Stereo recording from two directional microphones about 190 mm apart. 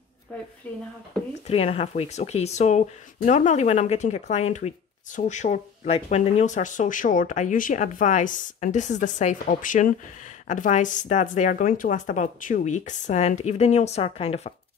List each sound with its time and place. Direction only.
0.7 s speech: 10° left (ahead or behind)
1.5 s speech: 30° left (ahead or behind)